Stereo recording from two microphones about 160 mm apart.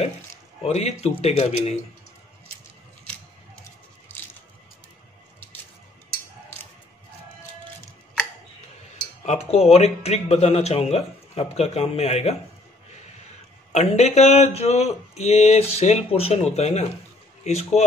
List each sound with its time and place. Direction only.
0.7 s speech: 45° left (ahead or behind)
9.2 s speech: 45° left (ahead or behind)
13.7 s speech: 45° left (ahead or behind)